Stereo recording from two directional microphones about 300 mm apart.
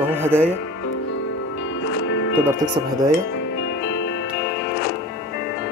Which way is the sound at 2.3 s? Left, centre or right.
Centre.